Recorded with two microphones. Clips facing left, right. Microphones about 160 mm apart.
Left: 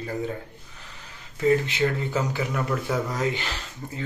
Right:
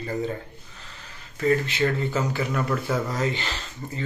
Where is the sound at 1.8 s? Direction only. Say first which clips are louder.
Right 1 dB; 15° left (ahead or behind).